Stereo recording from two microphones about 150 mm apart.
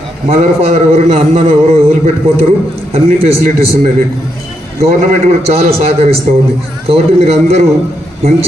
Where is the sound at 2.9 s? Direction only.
40° right (ahead or behind).